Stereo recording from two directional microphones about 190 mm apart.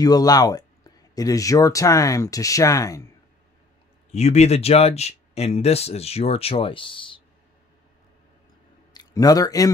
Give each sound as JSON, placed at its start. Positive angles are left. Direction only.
{"t": 0.0, "sound": "speech", "side_deg": 20}
{"t": 4.1, "sound": "speech", "side_deg": 35}
{"t": 8.9, "sound": "speech", "side_deg": 20}